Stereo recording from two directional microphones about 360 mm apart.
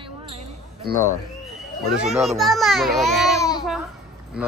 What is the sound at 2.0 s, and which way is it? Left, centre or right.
Speech, centre.